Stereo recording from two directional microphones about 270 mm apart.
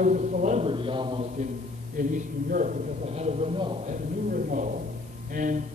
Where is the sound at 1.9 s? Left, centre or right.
Right.